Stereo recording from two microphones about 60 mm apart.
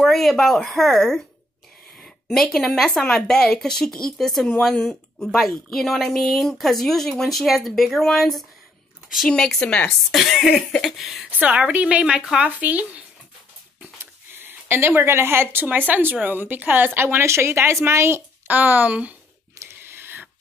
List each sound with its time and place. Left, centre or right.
0.0 s speech: centre
2.2 s speech: centre
9.6 s speech: centre
10.1 s speech: centre
11.3 s a woman's voice: right
12.4 s a woman's voice: right
14.3 s speech: right
18.5 s a woman's voice: right
19.6 s a sound: right